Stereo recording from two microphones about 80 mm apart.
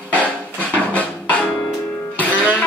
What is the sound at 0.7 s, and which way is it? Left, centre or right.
Music, centre.